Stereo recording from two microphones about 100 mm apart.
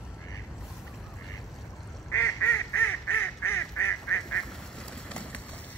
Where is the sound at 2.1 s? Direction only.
25° left (ahead or behind).